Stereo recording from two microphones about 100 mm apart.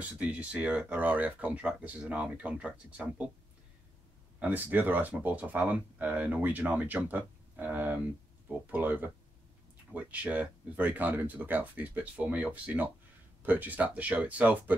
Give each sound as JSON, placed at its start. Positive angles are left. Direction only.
{"t": 0.0, "sound": "speech", "side_deg": -15}
{"t": 4.4, "sound": "speech", "side_deg": -15}